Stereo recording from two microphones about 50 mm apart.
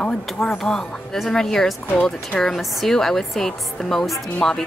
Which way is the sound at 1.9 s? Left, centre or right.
Centre.